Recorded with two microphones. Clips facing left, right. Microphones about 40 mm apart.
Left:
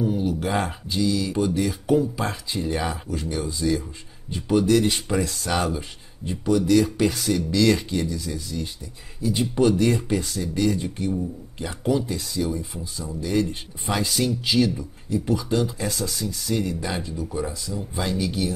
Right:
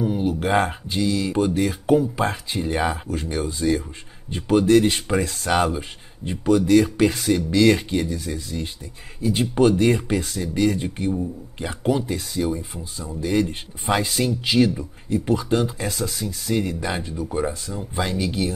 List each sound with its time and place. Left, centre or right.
0.0 s speech: right
6.4 s speech: right